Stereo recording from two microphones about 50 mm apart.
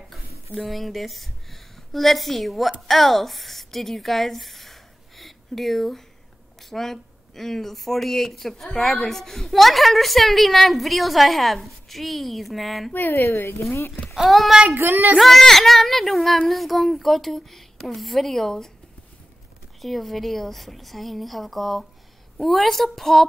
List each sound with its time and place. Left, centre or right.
0.1 s a woman's voice: centre
13.1 s a woman's voice: left
14.1 s speech: centre
14.7 s a child's voice: right
15.1 s speech: centre
19.8 s speech: centre